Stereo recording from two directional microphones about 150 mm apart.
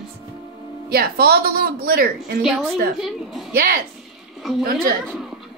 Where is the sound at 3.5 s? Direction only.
80° right.